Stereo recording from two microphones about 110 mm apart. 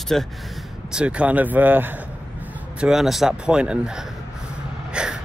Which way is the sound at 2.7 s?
5° right (ahead or behind).